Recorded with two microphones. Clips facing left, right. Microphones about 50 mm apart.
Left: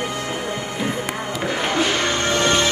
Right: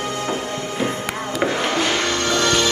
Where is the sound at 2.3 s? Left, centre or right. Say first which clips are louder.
Even; left.